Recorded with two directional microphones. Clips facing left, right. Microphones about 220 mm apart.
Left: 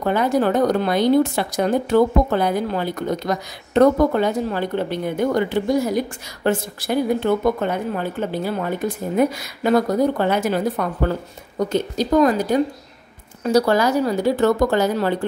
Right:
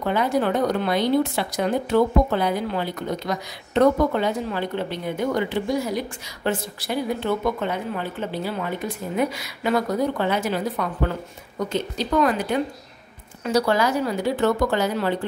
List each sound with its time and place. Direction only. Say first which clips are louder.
0.0 s a woman's voice: left 3 dB; 45° left (ahead or behind)